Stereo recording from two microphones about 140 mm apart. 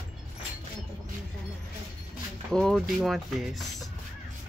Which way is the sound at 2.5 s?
5° left (ahead or behind).